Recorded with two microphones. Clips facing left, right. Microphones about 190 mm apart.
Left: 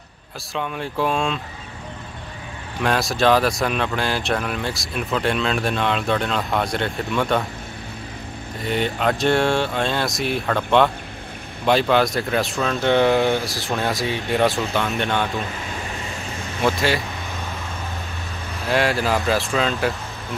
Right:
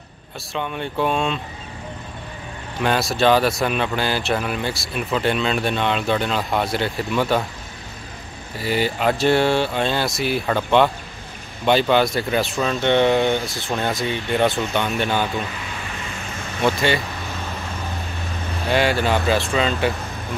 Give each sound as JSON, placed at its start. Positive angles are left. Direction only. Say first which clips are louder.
{"t": 0.6, "sound": "speech", "louder": "right 1 dB", "side_deg": 0}
{"t": 2.8, "sound": "speech", "louder": "right 1 dB", "side_deg": 0}
{"t": 8.5, "sound": "speech", "louder": "right 1 dB", "side_deg": -5}
{"t": 15.7, "sound": "vehicle", "louder": "left 2 dB", "side_deg": 35}
{"t": 16.6, "sound": "speech", "louder": "right 1 dB", "side_deg": 0}
{"t": 18.7, "sound": "speech", "louder": "right 1 dB", "side_deg": 0}